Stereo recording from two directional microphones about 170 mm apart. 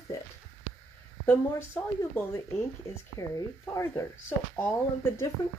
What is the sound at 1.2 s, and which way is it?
Speech, 10° left (ahead or behind).